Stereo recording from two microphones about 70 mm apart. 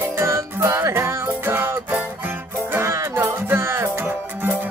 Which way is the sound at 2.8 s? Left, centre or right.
Right.